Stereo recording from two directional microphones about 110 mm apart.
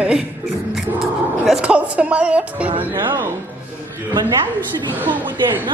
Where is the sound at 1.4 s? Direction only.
5° right (ahead or behind).